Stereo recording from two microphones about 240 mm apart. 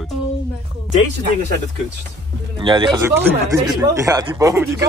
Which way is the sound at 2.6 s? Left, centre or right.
Centre.